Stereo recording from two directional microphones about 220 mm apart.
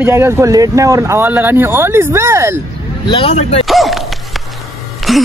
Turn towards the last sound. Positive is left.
turn(degrees=0)  # may be behind; listen again after turning